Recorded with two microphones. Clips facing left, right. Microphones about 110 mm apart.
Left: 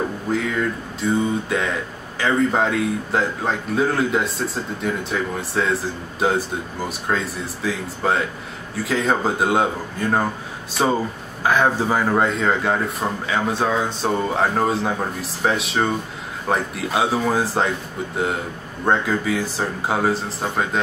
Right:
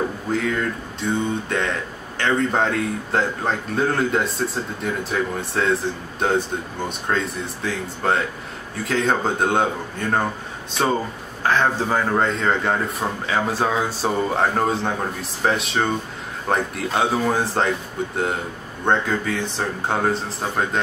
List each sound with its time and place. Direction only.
0.3 s speech: centre (ahead or behind)